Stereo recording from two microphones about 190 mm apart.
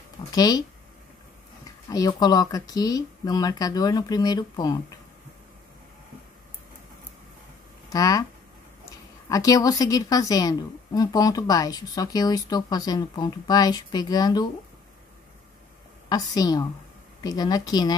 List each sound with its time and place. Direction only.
0.3 s a woman's voice: 20° left (ahead or behind)
1.9 s a woman's voice: 20° left (ahead or behind)
7.9 s a woman's voice: 20° left (ahead or behind)
9.3 s a woman's voice: 20° left (ahead or behind)
16.1 s a woman's voice: 20° left (ahead or behind)